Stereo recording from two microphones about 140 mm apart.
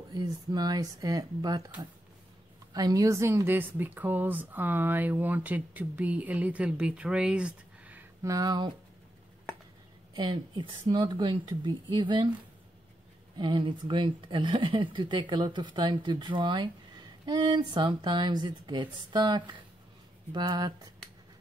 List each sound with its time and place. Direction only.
0.1 s speech: 30° right (ahead or behind)
2.7 s speech: 25° right (ahead or behind); by 8.0 s 10° right (ahead or behind)
8.2 s speech: 25° right (ahead or behind)
10.1 s speech: 35° right (ahead or behind)
13.4 s speech: 35° right (ahead or behind)